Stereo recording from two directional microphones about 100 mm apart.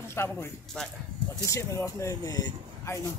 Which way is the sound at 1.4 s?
30° left (ahead or behind).